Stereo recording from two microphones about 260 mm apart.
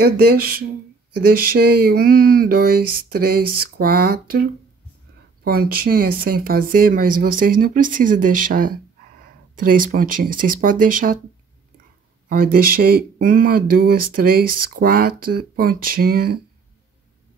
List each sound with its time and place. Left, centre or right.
0.0 s speech: right
12.3 s speech: right